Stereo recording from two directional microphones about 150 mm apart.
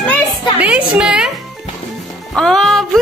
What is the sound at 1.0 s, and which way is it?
Speech, 5° right (ahead or behind).